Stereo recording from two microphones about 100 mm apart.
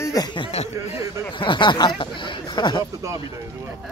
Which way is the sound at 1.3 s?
55° left (ahead or behind).